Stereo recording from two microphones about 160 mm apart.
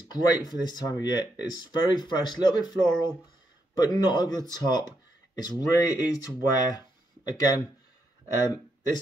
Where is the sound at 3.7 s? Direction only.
25° left (ahead or behind).